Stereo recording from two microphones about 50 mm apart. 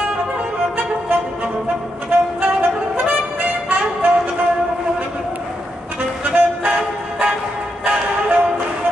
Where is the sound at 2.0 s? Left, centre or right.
Right.